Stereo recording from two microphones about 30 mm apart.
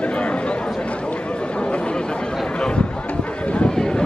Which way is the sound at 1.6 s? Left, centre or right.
Left.